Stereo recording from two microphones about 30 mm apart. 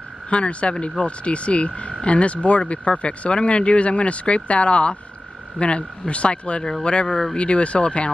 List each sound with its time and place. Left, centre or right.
0.3 s frog: left
5.6 s speech: left
7.3 s frog: left